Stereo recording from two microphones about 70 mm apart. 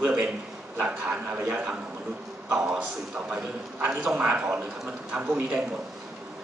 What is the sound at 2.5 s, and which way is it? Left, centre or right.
Speech, centre.